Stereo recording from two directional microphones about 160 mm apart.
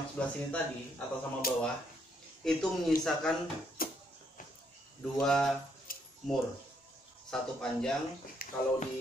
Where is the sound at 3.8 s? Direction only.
65° left (ahead or behind).